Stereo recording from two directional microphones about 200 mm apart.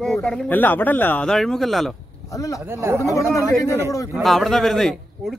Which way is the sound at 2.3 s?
15° left (ahead or behind).